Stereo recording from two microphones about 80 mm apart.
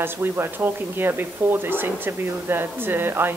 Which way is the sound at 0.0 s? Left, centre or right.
Right.